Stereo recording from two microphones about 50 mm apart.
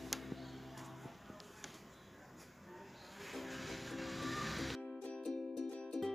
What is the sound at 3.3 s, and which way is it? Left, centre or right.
Music, centre.